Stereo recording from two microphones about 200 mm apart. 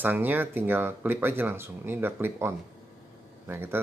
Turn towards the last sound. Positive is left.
turn(degrees=-10)  # may be behind; listen again after turning